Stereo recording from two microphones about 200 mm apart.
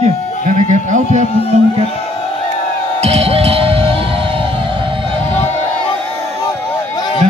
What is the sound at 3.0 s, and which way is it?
Music, 30° right (ahead or behind).